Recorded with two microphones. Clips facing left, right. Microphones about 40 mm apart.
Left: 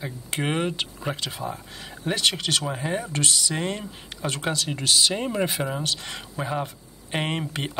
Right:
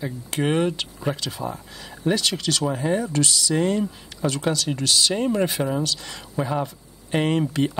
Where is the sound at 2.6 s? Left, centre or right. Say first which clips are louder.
Right 5 dB; centre.